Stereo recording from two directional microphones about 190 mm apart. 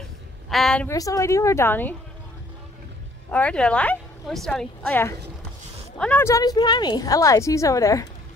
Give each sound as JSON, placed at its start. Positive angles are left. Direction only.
{"t": 0.5, "sound": "a woman's voice", "side_deg": 0}
{"t": 0.8, "sound": "a woman's voice", "side_deg": 15}
{"t": 3.3, "sound": "a woman's voice", "side_deg": 5}